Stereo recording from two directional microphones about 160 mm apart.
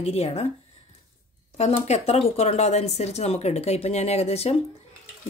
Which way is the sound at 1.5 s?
40° left (ahead or behind).